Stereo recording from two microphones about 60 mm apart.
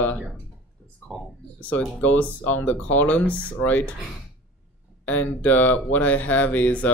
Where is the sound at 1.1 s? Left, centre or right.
Centre.